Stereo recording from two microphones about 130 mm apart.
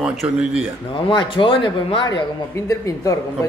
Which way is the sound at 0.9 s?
40° left (ahead or behind).